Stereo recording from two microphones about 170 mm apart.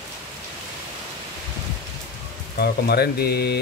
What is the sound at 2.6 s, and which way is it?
Speech, 70° left (ahead or behind).